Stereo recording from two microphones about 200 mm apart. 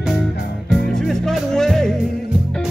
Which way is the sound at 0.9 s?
5° left (ahead or behind).